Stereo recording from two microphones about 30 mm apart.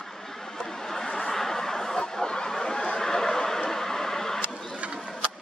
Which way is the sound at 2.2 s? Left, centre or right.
Left.